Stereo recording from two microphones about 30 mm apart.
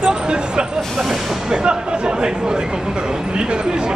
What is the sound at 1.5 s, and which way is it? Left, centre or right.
Speech, right.